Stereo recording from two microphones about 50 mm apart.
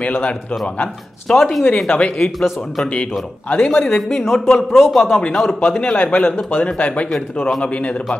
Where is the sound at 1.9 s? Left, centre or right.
Left.